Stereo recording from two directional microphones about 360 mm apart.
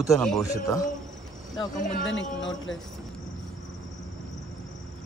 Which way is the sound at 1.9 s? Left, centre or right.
Left.